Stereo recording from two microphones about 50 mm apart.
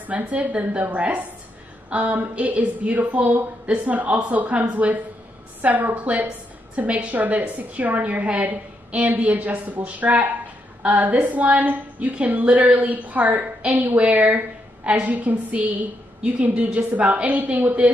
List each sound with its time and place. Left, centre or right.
0.0 s a woman's voice: right